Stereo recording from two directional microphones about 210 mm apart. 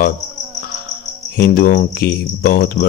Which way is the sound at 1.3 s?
45° left (ahead or behind).